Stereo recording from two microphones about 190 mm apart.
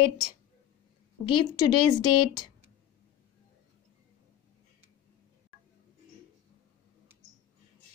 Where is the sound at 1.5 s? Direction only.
25° left (ahead or behind).